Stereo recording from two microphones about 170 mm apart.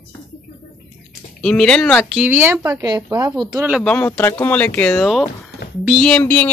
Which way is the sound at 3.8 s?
10° left (ahead or behind).